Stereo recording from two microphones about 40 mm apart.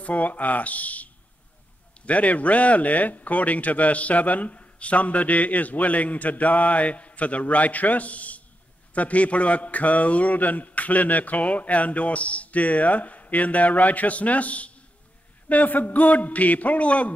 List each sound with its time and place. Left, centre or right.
0.0 s speech: left